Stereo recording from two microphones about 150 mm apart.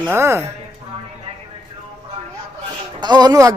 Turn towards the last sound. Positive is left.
turn(degrees=-25)  # may be behind; listen again after turning